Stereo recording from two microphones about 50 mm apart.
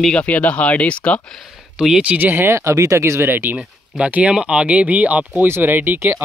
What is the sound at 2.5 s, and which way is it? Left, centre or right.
Speech, right.